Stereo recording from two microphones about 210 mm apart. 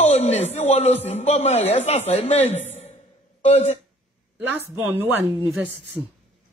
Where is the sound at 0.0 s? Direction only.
30° left (ahead or behind).